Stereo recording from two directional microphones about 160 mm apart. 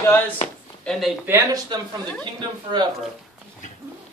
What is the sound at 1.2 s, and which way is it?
Speech, 15° right (ahead or behind).